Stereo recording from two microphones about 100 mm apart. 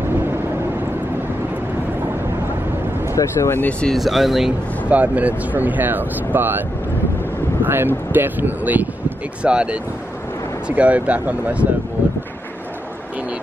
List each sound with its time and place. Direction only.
3.2 s speech: 25° left (ahead or behind)
3.8 s speech: centre (ahead or behind)
4.8 s speech: 15° right (ahead or behind)
7.6 s speech: 20° right (ahead or behind)